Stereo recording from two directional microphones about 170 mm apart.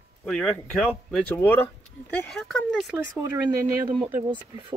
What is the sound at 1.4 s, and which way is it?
Speech, 10° left (ahead or behind).